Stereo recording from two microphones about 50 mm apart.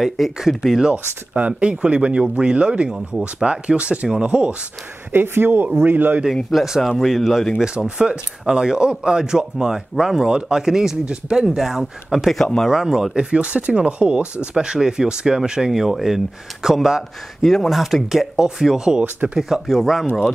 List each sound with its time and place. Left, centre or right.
0.0 s speech: centre
0.9 s speech: right
5.1 s a man's voice: right
6.5 s speech: centre
6.8 s speech: centre
7.5 s speech: centre
11.4 s speech: centre
17.4 s speech: centre
18.9 s speech: right
19.6 s speech: centre